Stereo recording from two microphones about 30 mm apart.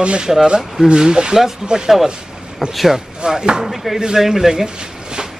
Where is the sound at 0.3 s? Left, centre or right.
Right.